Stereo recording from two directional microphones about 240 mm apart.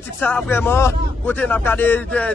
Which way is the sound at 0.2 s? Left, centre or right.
Centre.